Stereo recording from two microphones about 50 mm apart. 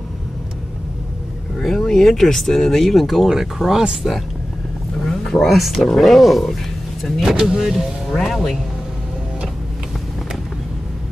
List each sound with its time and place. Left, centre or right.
1.6 s speech: centre
8.1 s speech: centre